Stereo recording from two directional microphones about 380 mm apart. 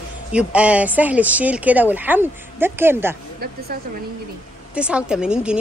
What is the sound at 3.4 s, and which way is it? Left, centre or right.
Speech, right.